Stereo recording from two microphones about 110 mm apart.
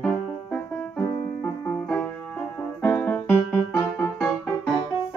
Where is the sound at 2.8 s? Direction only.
15° left (ahead or behind).